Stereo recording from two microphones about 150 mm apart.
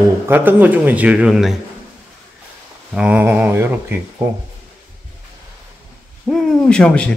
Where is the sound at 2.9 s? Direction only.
10° right (ahead or behind).